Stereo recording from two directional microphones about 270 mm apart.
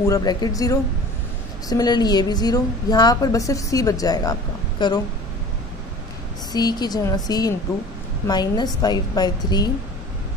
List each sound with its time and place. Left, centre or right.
0.0 s a woman's voice: centre
6.5 s a woman's voice: centre